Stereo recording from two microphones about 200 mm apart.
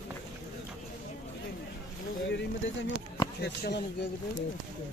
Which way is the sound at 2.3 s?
65° left (ahead or behind).